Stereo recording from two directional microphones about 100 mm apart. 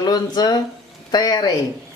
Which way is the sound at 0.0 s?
45° left (ahead or behind).